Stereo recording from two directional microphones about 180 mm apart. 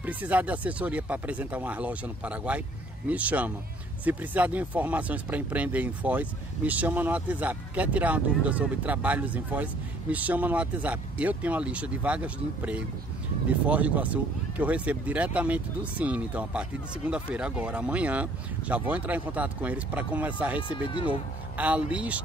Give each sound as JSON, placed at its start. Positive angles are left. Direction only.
{"t": 0.0, "sound": "speech", "side_deg": -10}
{"t": 20.6, "sound": "speech", "side_deg": 30}
{"t": 21.1, "sound": "speech", "side_deg": -10}